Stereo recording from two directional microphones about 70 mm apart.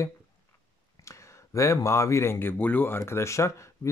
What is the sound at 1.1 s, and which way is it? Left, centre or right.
Speech, left.